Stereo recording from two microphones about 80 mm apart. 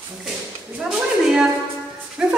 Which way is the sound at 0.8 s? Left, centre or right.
Centre.